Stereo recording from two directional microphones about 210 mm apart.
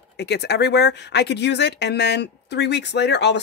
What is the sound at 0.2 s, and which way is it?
Speech, 50° left (ahead or behind).